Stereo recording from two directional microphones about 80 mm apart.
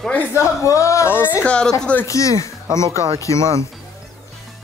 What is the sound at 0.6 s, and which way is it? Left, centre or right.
Speech, left.